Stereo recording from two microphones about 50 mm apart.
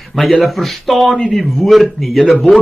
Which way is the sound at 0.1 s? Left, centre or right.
Centre.